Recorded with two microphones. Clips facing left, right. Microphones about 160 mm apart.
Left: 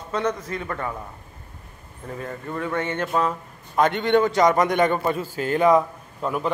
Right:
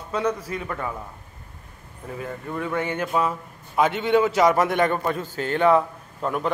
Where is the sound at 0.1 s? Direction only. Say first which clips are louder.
Even; 10° right (ahead or behind).